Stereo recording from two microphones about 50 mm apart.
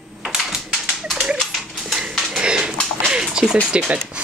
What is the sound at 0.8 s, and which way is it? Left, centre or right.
Dog, centre.